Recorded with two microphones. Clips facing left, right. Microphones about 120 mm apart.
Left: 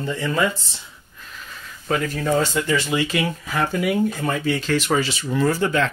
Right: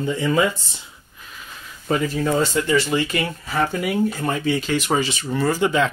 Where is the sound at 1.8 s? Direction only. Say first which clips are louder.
Right 1 dB; 10° right (ahead or behind).